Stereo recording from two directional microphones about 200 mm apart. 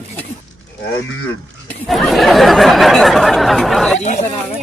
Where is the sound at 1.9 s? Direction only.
Centre (ahead or behind).